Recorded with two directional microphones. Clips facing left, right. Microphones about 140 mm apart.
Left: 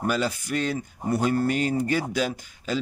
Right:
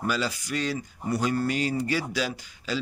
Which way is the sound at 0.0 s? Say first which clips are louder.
Left 3 dB; 50° left (ahead or behind).